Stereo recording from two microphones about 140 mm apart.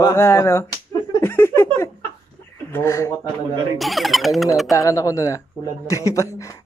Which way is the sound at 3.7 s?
Centre (ahead or behind).